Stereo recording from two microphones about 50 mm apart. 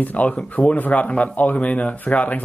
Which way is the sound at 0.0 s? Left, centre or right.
Left.